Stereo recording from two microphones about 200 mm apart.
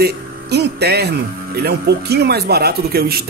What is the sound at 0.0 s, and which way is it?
A man's voice, 55° right (ahead or behind).